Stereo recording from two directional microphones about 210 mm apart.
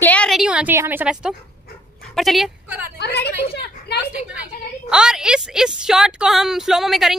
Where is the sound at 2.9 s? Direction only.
50° left (ahead or behind).